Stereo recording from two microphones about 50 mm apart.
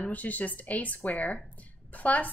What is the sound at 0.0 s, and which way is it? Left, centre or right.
Speech, left.